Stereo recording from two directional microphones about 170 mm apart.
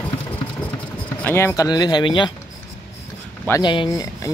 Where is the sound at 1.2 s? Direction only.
10° left (ahead or behind); by 2.3 s 30° left (ahead or behind).